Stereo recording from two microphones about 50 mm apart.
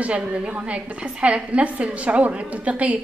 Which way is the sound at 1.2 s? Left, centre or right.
Right.